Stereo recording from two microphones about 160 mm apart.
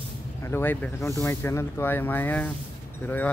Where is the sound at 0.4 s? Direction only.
15° left (ahead or behind).